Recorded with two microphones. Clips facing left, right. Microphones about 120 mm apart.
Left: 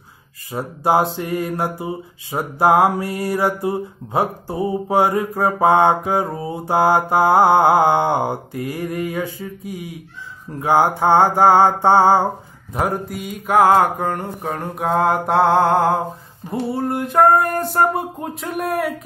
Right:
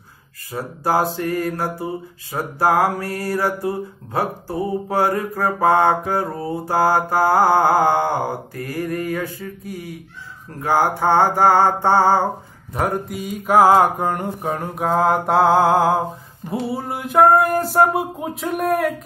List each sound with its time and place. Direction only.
0.5 s mantra: 20° left (ahead or behind)
12.7 s mantra: 5° left (ahead or behind)